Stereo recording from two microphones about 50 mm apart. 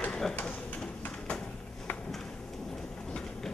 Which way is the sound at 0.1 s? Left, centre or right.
Centre.